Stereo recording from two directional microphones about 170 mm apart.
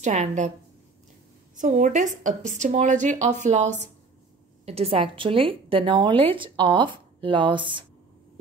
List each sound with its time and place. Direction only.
0.0 s a woman's voice: 45° right (ahead or behind)
1.6 s a woman's voice: 45° right (ahead or behind); by 7.8 s 30° right (ahead or behind)